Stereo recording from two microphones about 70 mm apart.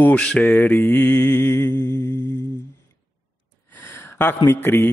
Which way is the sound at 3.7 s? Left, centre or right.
Left.